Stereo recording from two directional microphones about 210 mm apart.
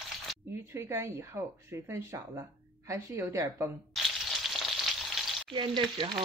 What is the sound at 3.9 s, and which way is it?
Frying, centre (ahead or behind).